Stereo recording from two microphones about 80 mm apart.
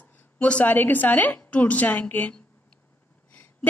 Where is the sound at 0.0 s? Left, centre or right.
Centre.